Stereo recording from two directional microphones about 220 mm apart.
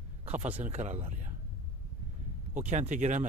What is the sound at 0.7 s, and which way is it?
Speech, 30° right (ahead or behind).